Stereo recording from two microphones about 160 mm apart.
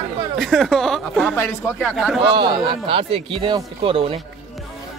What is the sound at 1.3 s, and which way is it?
Speech, 15° left (ahead or behind).